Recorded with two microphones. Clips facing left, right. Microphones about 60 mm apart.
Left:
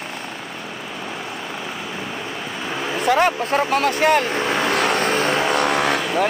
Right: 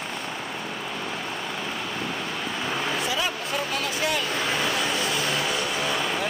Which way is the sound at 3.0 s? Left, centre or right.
Left.